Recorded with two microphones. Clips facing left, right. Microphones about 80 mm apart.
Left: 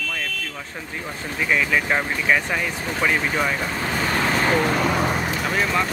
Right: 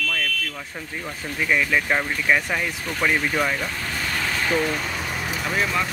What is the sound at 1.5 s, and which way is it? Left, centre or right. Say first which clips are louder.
Speech: left 1 dB; centre.